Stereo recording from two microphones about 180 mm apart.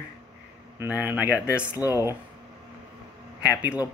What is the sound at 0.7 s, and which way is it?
Speech, 10° right (ahead or behind).